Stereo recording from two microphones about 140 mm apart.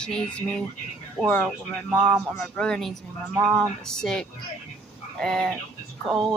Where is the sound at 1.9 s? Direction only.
Centre (ahead or behind).